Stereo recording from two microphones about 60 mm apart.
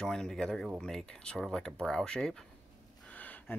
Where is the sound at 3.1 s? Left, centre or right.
Left.